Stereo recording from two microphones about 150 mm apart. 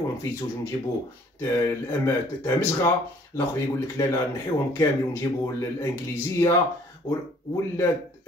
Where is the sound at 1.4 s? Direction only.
15° left (ahead or behind).